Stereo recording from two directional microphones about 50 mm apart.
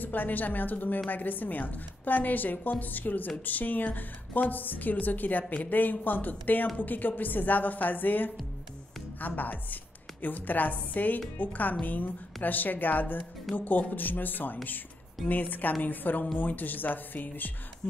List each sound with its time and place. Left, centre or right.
0.0 s a woman's voice: left